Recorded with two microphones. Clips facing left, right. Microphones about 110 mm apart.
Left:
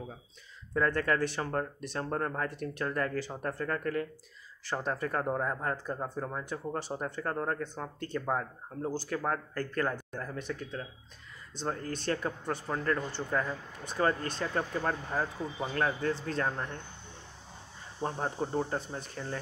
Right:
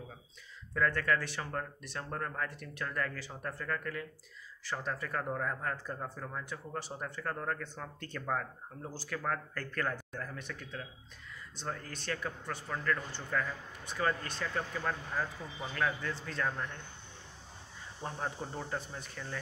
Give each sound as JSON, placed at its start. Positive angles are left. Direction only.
{"t": 0.7, "sound": "a man's voice", "side_deg": 35}
{"t": 8.8, "sound": "a man's voice", "side_deg": 35}
{"t": 18.0, "sound": "a man's voice", "side_deg": 30}